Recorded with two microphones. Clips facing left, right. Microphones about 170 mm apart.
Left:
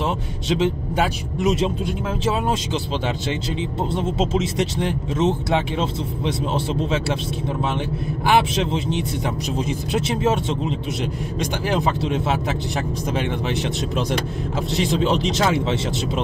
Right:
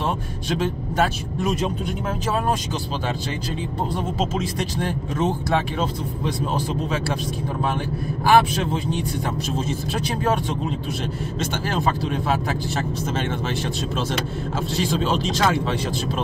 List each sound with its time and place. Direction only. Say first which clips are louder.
3.9 s speech: left 4 dB; 25° left (ahead or behind)
8.3 s speech: right 1 dB; 20° left (ahead or behind)
11.7 s speech: left 3 dB; 20° left (ahead or behind)